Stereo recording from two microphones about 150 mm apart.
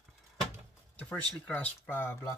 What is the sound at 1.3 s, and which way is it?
Speech, 10° left (ahead or behind).